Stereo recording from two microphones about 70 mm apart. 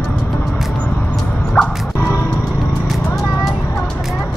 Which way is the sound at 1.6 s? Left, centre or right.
Left.